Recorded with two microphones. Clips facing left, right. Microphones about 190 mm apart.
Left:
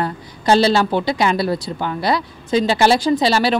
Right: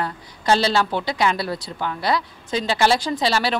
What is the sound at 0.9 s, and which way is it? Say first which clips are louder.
Speech: left 6 dB; 40° left (ahead or behind).